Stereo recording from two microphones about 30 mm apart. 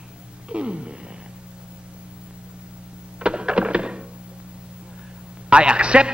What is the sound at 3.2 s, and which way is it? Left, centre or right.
Thunk, right.